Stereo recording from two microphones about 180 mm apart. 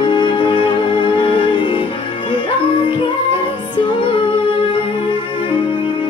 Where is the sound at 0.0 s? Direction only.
25° left (ahead or behind).